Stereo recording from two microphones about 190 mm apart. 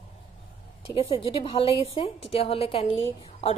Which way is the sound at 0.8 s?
30° left (ahead or behind).